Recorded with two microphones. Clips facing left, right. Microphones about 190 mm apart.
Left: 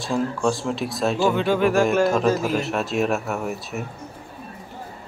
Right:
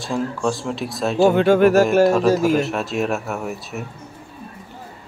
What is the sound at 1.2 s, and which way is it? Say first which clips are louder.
Speech: right 7 dB; 50° right (ahead or behind).